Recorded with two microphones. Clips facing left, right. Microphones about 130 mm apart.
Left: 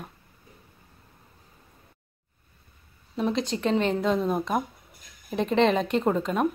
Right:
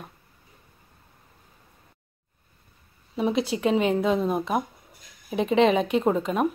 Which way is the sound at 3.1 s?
5° right (ahead or behind).